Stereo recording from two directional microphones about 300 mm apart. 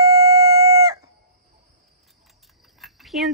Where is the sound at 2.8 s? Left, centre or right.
Centre.